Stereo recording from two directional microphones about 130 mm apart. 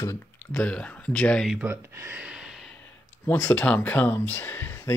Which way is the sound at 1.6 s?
20° right (ahead or behind).